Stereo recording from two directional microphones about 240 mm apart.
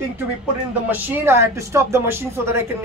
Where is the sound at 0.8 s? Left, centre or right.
Centre.